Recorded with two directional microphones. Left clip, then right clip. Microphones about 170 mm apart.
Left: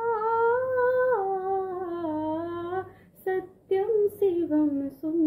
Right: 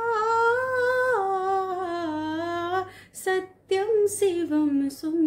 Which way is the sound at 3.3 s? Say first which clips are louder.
Right 2 dB; 10° right (ahead or behind).